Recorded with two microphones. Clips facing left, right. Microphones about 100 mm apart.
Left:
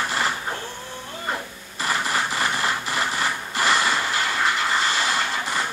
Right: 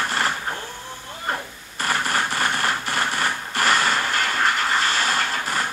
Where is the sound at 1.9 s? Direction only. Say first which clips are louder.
Right 1 dB; 45° right (ahead or behind).